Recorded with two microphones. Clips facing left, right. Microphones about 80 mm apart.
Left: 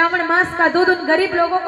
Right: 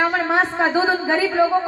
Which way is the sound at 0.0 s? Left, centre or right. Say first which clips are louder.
Left 3 dB; left.